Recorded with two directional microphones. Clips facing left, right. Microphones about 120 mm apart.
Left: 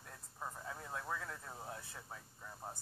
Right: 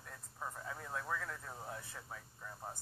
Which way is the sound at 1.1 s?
15° left (ahead or behind).